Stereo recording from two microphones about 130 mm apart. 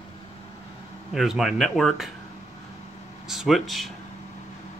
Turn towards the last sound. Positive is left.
turn(degrees=0)  # may be behind; listen again after turning